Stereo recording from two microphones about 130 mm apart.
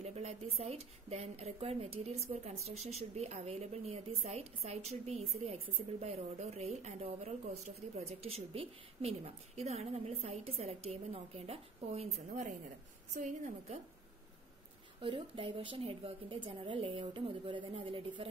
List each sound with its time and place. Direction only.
0.0 s a woman's voice: 55° right (ahead or behind); by 13.7 s 75° right (ahead or behind)
15.0 s a woman's voice: 40° right (ahead or behind)